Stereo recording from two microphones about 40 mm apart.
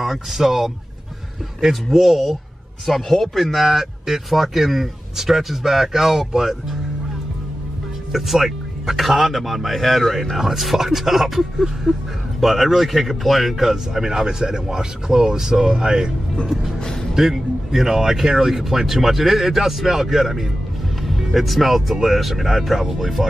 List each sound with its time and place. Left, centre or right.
0.0 s a man's voice: centre
1.7 s speech: centre
3.6 s a man's voice: centre
8.1 s a man's voice: centre
17.1 s a man's voice: centre